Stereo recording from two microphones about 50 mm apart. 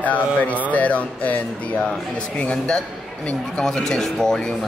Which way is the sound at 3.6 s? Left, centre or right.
Centre.